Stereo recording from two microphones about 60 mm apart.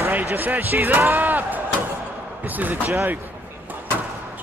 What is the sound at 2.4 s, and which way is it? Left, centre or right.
Speech, right.